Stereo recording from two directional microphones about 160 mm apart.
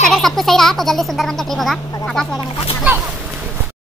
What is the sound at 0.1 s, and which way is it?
Speech, centre (ahead or behind).